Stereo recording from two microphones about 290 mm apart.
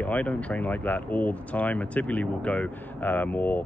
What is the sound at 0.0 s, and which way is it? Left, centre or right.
Speech, centre.